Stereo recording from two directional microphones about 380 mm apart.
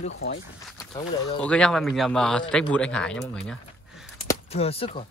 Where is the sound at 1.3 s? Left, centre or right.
Centre.